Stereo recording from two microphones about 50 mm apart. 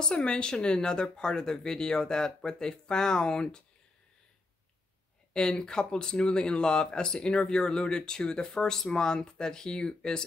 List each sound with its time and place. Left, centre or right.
0.1 s speech: left
5.3 s speech: centre